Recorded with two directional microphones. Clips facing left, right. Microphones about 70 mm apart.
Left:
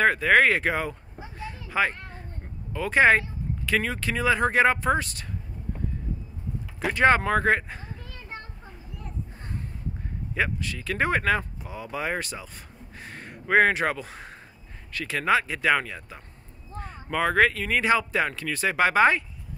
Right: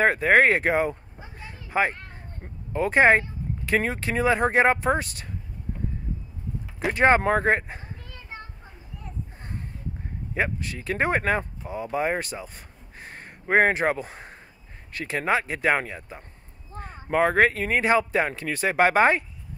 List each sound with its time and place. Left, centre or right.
0.0 s a child's voice: right
6.9 s speech: right
10.3 s speech: right
13.5 s speech: right